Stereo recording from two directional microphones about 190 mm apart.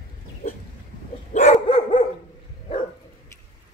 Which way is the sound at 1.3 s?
40° left (ahead or behind).